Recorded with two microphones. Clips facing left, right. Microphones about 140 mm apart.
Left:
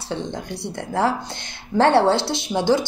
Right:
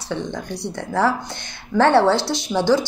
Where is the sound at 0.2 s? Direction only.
20° left (ahead or behind).